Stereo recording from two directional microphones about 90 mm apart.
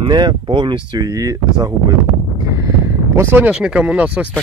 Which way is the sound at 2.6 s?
35° right (ahead or behind).